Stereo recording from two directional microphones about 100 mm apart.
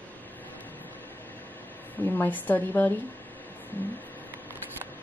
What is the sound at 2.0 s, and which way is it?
Speech, 20° left (ahead or behind).